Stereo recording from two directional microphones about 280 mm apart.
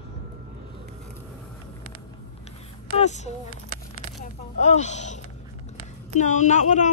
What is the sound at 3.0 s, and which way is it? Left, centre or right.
Speech, left.